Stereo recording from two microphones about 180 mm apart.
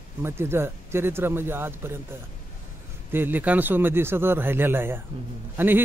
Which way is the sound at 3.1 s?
10° right (ahead or behind).